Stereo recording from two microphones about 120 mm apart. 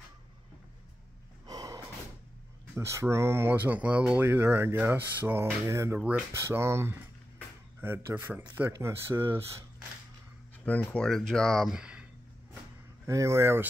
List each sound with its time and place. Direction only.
1.4 s snort: 35° right (ahead or behind)
2.7 s speech: 25° right (ahead or behind)
5.9 s speech: 10° right (ahead or behind)
6.4 s speech: 25° right (ahead or behind)
10.6 s speech: 15° left (ahead or behind); by 12.1 s 10° right (ahead or behind)
13.0 s speech: 25° right (ahead or behind)